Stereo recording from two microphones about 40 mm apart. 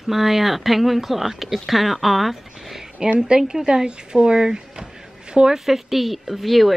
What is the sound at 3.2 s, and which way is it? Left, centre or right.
A woman's voice, centre.